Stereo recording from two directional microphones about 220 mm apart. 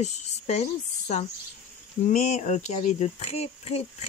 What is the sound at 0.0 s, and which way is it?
Speech, 30° left (ahead or behind).